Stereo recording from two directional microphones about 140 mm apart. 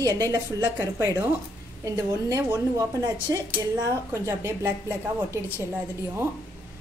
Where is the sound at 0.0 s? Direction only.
25° right (ahead or behind).